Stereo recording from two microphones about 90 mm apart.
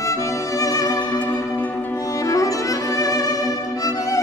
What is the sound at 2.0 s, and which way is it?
Violin, 40° left (ahead or behind).